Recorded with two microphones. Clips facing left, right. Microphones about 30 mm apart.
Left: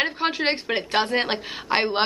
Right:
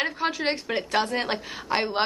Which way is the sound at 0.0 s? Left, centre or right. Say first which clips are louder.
Left 3 dB; left.